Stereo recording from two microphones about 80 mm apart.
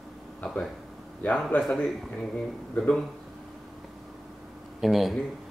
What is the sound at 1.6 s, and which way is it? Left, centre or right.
Speech, centre.